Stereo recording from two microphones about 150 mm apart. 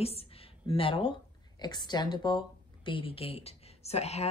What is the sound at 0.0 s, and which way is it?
A woman's voice, 40° left (ahead or behind).